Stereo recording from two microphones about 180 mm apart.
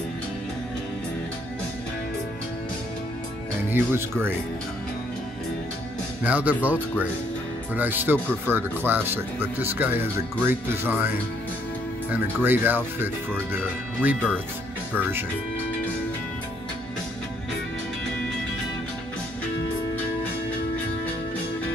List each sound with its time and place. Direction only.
3.7 s speech: 10° right (ahead or behind)
6.2 s speech: 10° right (ahead or behind)